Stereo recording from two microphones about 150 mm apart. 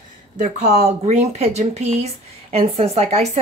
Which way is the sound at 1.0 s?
45° right (ahead or behind).